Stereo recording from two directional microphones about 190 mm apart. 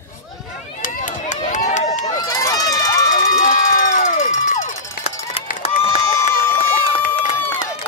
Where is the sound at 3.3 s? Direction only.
45° left (ahead or behind).